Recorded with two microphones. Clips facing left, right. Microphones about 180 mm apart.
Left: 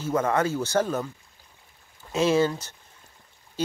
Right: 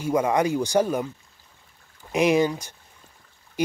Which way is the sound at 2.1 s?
15° right (ahead or behind).